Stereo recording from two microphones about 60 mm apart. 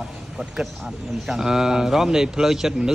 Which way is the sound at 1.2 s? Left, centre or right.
Centre.